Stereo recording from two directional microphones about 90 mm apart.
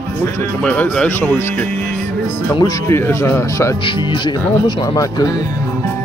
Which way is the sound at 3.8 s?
65° left (ahead or behind).